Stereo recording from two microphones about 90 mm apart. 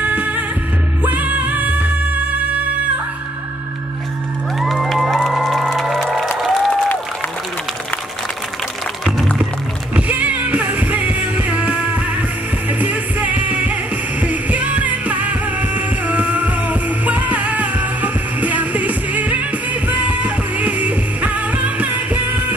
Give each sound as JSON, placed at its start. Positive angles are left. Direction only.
{"t": 0.0, "sound": "music", "side_deg": -15}
{"t": 4.6, "sound": "music", "side_deg": 0}
{"t": 6.2, "sound": "applause", "side_deg": 0}
{"t": 9.9, "sound": "music", "side_deg": -15}